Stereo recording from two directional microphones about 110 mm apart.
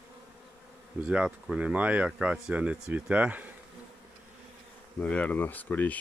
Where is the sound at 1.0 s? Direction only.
10° right (ahead or behind).